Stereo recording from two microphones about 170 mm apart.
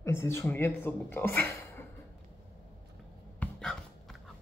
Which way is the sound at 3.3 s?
5° left (ahead or behind).